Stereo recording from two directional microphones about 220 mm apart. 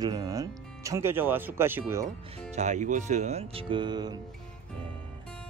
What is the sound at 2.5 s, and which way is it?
Speech, 30° right (ahead or behind).